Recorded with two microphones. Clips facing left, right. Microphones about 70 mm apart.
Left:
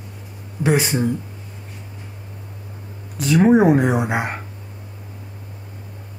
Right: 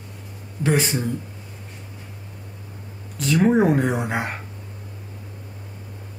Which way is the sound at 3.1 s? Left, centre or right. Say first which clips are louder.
Left 4 dB; centre.